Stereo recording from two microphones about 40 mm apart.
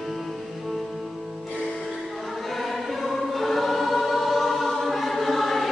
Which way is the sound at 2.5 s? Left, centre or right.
Centre.